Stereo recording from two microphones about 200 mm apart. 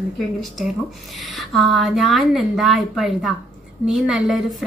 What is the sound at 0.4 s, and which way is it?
A woman's voice, centre (ahead or behind).